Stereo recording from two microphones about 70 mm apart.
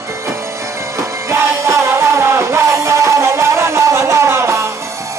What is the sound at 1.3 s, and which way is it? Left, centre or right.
Music, right.